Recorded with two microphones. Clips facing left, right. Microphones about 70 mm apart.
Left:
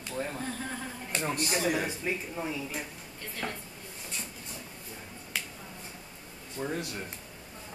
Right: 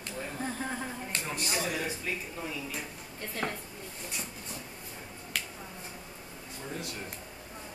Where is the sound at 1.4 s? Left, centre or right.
Left.